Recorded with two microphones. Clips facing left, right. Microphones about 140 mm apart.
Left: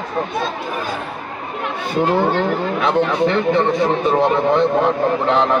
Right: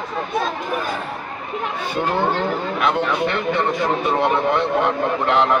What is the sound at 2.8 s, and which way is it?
A man's voice, 30° left (ahead or behind).